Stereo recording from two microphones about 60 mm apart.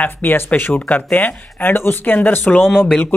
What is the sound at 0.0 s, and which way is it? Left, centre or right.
Speech, left.